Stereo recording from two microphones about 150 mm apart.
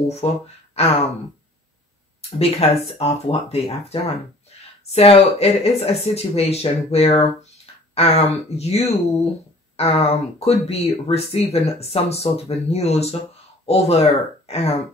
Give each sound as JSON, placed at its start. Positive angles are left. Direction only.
{"t": 0.2, "sound": "speech", "side_deg": 45}
{"t": 2.3, "sound": "speech", "side_deg": 40}